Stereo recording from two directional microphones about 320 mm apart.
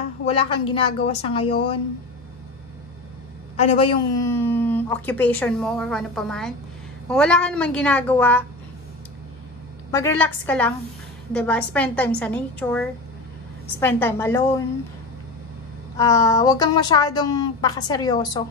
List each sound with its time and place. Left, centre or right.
0.3 s speech: centre
3.6 s speech: centre
9.8 s speech: centre
16.0 s speech: centre